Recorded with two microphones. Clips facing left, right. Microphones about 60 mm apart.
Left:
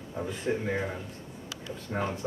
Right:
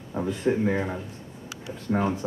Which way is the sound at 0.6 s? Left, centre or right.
Centre.